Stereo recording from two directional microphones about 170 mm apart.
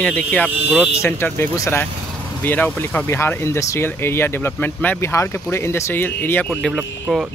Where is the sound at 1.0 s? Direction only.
15° left (ahead or behind).